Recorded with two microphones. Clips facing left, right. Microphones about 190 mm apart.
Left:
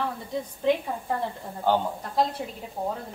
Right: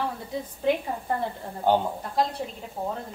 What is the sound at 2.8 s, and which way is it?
Speech, 10° left (ahead or behind).